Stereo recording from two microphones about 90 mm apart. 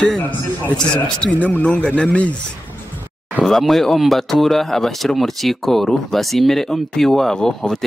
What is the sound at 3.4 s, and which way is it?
Speech, centre (ahead or behind).